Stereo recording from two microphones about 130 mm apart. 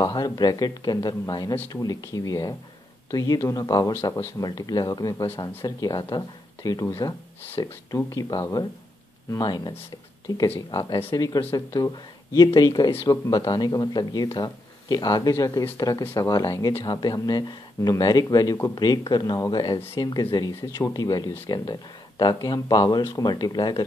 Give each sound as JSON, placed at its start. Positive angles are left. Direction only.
{"t": 0.0, "sound": "speech", "side_deg": 35}
{"t": 3.9, "sound": "speech", "side_deg": 20}